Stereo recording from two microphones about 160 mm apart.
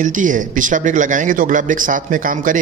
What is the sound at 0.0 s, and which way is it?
Speech, 55° right (ahead or behind).